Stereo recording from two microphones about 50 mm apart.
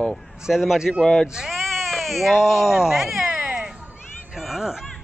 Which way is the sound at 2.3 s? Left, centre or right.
Centre.